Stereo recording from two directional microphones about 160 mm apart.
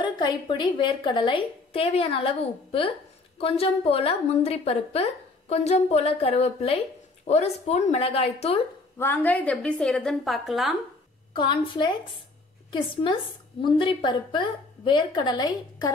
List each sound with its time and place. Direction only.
0.0 s a woman's voice: 25° left (ahead or behind)
8.9 s a woman's voice: 10° left (ahead or behind)
11.3 s a woman's voice: 30° left (ahead or behind)